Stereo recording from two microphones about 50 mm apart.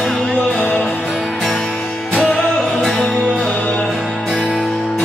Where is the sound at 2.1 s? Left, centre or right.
Centre.